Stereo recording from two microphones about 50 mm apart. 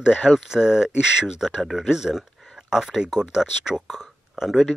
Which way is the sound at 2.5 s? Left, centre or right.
Centre.